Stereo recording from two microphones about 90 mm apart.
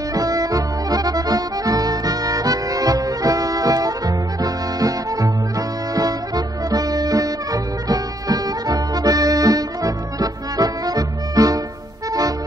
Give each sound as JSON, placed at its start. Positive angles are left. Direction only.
{"t": 0.1, "sound": "accordion", "side_deg": -40}
{"t": 12.1, "sound": "music", "side_deg": -40}